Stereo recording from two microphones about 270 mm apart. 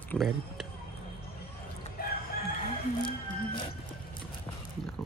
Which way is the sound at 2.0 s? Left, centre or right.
Left.